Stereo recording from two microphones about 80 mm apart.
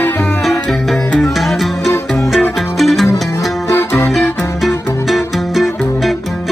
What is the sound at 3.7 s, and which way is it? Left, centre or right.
Music, left.